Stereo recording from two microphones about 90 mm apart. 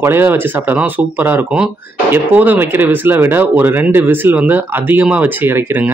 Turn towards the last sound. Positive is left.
turn(degrees=-25)  # may be behind; listen again after turning